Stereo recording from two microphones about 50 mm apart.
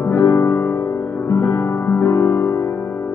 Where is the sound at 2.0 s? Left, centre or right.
Left.